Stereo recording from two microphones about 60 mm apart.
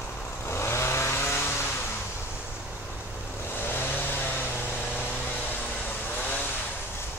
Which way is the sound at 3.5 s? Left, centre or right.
Left.